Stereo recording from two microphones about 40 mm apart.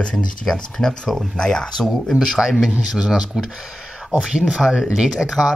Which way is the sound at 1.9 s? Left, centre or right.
Centre.